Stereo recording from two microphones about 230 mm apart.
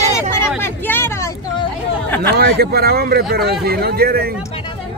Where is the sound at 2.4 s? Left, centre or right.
Right.